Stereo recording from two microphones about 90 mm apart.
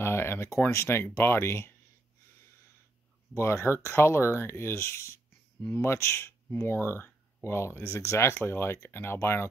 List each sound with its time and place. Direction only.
0.0 s speech: 25° left (ahead or behind)
3.3 s speech: 25° left (ahead or behind)